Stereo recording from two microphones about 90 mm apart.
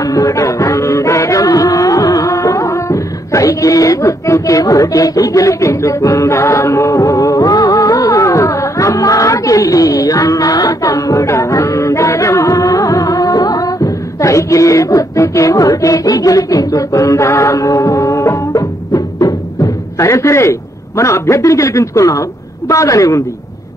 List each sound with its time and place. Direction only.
0.0 s music: 40° left (ahead or behind)
21.0 s a man's voice: 35° left (ahead or behind)